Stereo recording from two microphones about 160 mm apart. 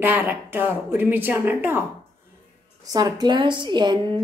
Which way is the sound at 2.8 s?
25° right (ahead or behind).